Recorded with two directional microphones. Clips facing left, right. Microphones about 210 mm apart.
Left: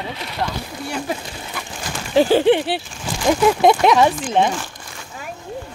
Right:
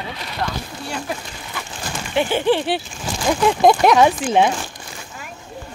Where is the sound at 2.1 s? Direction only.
35° left (ahead or behind).